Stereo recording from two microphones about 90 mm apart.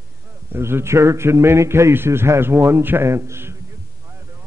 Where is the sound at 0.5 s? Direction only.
30° right (ahead or behind).